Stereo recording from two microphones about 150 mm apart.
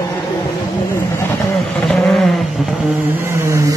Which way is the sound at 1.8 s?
Centre (ahead or behind).